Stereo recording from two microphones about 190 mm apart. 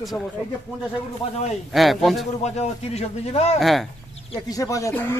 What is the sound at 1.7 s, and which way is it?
Speech, centre (ahead or behind).